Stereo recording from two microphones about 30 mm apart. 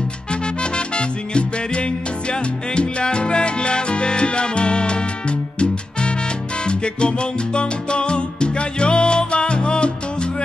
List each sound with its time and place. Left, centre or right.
0.3 s music: left
6.6 s salsa music: left